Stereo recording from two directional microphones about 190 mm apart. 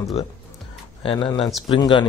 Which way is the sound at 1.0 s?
25° left (ahead or behind).